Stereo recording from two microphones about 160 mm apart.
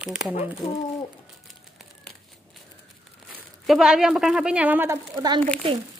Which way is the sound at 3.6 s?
5° right (ahead or behind).